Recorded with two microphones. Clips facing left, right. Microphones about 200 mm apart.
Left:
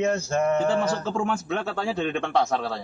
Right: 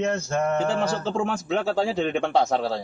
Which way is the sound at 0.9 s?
35° right (ahead or behind).